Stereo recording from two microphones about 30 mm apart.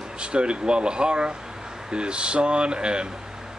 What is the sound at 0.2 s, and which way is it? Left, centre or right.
Speech, right.